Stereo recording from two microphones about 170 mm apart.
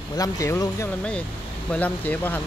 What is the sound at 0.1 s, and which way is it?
Speech, 20° left (ahead or behind).